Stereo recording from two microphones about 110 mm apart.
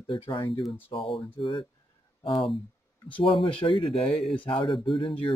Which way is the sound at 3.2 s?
50° left (ahead or behind).